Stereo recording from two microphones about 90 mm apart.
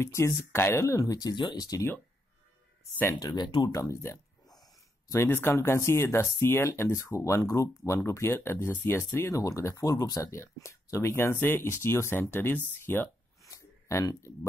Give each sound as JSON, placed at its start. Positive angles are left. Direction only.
{"t": 0.0, "sound": "speech", "side_deg": 30}
{"t": 1.3, "sound": "speech", "side_deg": 55}
{"t": 3.1, "sound": "speech", "side_deg": 40}
{"t": 3.4, "sound": "speech", "side_deg": 60}
{"t": 3.7, "sound": "speech", "side_deg": 35}
{"t": 13.4, "sound": "a sound", "side_deg": 35}